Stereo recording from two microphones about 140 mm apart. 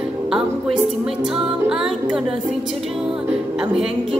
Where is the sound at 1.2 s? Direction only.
5° right (ahead or behind).